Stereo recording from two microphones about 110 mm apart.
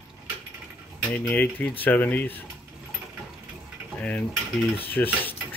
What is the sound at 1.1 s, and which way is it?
Speech, 15° left (ahead or behind).